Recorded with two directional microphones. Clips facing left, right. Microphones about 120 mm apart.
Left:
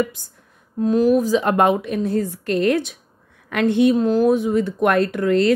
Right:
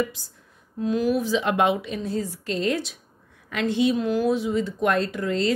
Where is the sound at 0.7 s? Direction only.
40° left (ahead or behind).